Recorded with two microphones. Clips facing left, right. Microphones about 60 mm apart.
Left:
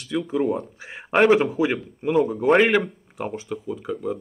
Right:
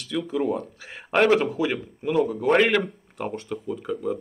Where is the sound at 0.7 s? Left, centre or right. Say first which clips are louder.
Left 2 dB; centre.